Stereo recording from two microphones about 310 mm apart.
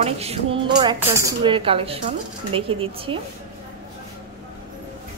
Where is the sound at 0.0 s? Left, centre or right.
Centre.